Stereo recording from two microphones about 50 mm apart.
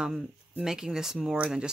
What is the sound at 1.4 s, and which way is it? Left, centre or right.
Speech, centre.